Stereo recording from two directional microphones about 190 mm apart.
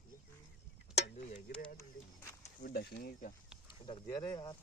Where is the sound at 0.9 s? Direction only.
35° left (ahead or behind).